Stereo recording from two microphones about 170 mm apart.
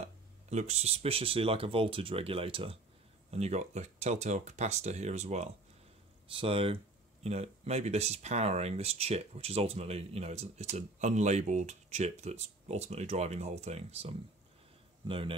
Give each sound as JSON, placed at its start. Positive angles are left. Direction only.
{"t": 0.5, "sound": "speech", "side_deg": -40}